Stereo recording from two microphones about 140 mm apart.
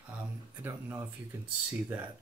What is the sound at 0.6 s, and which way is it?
Speech, 15° right (ahead or behind).